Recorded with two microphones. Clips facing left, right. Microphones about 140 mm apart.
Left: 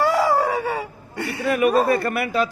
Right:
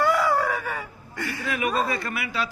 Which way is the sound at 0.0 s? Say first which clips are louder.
Left 3 dB; 35° left (ahead or behind).